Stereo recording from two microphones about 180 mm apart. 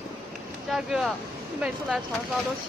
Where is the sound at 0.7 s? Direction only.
Centre (ahead or behind).